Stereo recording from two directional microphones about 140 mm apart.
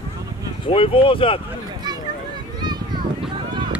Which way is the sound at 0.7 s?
40° left (ahead or behind).